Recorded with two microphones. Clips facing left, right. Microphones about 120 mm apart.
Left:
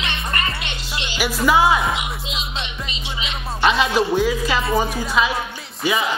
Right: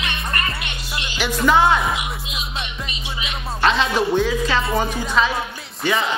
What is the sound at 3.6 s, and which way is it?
Speech, 5° left (ahead or behind).